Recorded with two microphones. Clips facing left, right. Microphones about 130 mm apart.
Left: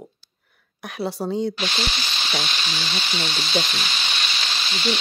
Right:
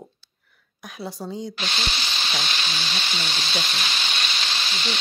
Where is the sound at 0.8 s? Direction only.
70° left (ahead or behind).